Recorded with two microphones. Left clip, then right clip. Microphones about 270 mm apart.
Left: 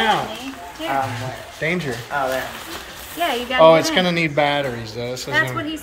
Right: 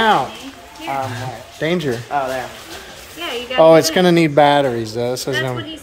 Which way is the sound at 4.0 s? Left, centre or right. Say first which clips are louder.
Right 6 dB; right.